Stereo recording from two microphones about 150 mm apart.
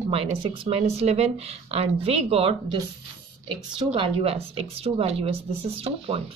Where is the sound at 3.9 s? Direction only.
40° right (ahead or behind).